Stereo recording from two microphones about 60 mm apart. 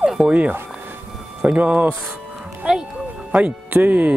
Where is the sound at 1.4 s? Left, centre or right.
Centre.